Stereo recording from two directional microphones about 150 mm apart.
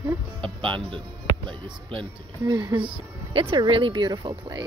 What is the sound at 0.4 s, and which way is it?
Speech, 35° right (ahead or behind).